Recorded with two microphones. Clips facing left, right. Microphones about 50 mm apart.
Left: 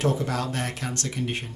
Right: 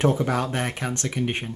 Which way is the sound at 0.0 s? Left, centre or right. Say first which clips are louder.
Right 4 dB; right.